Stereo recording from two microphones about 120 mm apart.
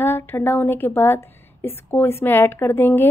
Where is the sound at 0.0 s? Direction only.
20° left (ahead or behind).